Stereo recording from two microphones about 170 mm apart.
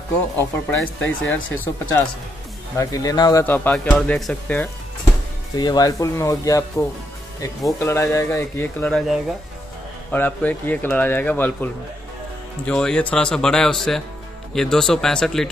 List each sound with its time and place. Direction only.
0.4 s a man's voice: 15° left (ahead or behind)
3.4 s a man's voice: 10° left (ahead or behind)
5.6 s speech: 25° left (ahead or behind)
7.8 s a man's voice: 15° left (ahead or behind)